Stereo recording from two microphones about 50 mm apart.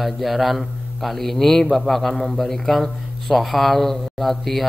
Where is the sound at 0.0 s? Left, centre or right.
Centre.